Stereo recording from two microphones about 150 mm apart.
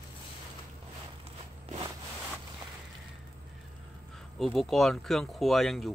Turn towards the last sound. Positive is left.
turn(degrees=0)  # may be behind; listen again after turning